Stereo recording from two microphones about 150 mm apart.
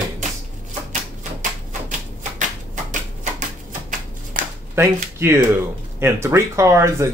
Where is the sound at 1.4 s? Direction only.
55° right (ahead or behind).